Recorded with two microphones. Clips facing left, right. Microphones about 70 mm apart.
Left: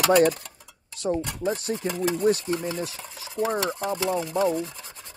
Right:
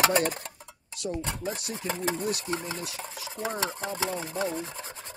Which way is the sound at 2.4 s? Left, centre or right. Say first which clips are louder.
Left 5 dB; right.